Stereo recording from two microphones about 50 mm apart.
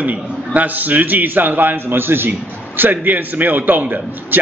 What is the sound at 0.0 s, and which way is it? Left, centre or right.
A man's voice, right.